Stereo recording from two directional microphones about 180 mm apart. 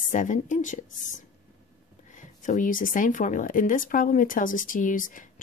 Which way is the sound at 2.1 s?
45° left (ahead or behind).